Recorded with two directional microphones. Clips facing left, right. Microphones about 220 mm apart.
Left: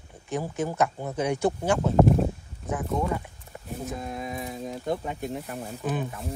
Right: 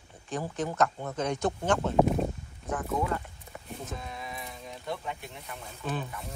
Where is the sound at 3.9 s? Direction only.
45° left (ahead or behind).